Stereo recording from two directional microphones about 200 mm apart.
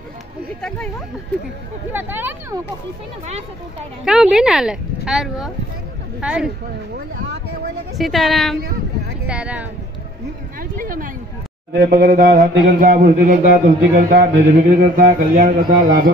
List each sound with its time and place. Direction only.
0.6 s speech: 5° left (ahead or behind)
1.9 s speech: 10° right (ahead or behind)
4.0 s speech: centre (ahead or behind)
8.0 s speech: centre (ahead or behind)
10.6 s a man's voice: 45° right (ahead or behind)
12.8 s a man's voice: 45° right (ahead or behind)